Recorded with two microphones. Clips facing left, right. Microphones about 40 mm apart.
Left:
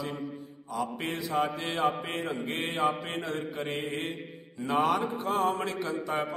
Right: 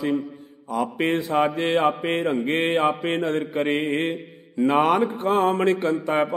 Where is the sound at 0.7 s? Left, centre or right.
Right.